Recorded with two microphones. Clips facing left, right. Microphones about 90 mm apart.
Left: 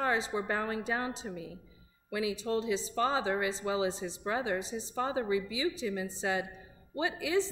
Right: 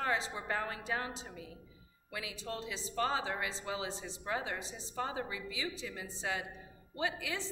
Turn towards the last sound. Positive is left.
turn(degrees=20)  # may be behind; listen again after turning